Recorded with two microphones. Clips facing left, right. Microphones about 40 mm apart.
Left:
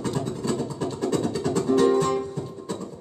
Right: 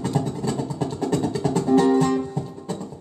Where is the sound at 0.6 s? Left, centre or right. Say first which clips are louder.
Right 1 dB; centre.